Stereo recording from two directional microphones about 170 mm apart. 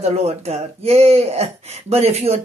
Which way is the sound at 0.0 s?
40° right (ahead or behind).